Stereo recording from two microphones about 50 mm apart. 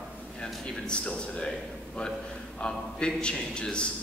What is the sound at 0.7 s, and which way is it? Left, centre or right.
A man's voice, centre.